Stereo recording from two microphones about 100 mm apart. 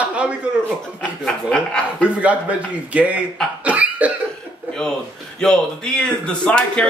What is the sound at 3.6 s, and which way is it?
Cough, 15° right (ahead or behind).